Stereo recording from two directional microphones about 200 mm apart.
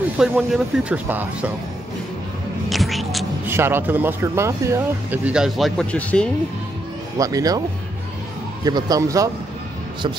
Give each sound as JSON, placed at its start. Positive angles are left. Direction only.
{"t": 0.2, "sound": "speech", "side_deg": 0}
{"t": 2.7, "sound": "music", "side_deg": 0}
{"t": 3.4, "sound": "speech", "side_deg": -10}
{"t": 7.2, "sound": "speech", "side_deg": -15}
{"t": 8.6, "sound": "speech", "side_deg": -20}